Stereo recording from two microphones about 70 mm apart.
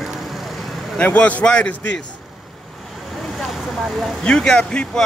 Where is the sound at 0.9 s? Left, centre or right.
Centre.